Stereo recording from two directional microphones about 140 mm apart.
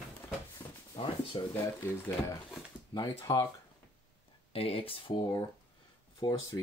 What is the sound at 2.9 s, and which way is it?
Speech, 25° left (ahead or behind).